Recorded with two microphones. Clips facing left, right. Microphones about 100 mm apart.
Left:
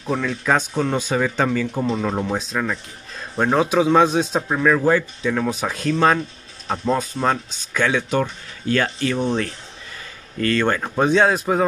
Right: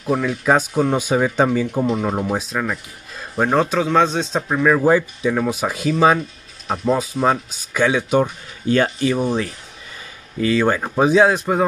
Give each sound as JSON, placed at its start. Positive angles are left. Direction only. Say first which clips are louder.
{"t": 0.0, "sound": "a man's voice", "louder": "right 3 dB", "side_deg": -10}
{"t": 3.6, "sound": "a man's voice", "louder": "left 1 dB", "side_deg": 10}
{"t": 4.7, "sound": "a man's voice", "louder": "right 2 dB", "side_deg": -15}